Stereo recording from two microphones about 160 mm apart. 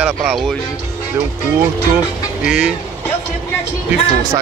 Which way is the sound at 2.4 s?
5° right (ahead or behind).